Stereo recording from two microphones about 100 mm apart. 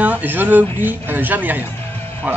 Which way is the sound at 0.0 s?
15° right (ahead or behind).